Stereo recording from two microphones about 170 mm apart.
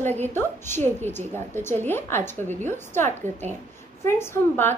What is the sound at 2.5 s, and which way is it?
Speech, 45° right (ahead or behind).